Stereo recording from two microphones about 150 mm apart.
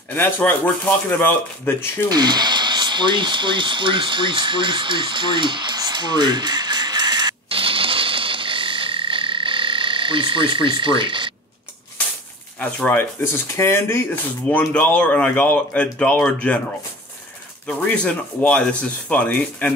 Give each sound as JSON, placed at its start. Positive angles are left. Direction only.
{"t": 0.1, "sound": "speech", "side_deg": 15}
{"t": 2.0, "sound": "a sound", "side_deg": -30}
{"t": 12.5, "sound": "speech", "side_deg": 10}
{"t": 17.6, "sound": "speech", "side_deg": 10}